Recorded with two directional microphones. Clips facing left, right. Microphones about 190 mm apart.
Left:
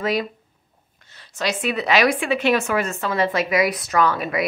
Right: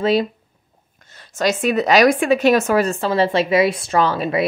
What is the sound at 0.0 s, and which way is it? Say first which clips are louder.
Speech: right 6 dB; 30° right (ahead or behind).